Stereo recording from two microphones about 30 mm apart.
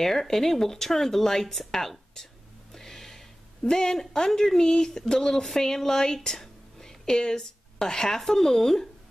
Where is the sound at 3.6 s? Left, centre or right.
Centre.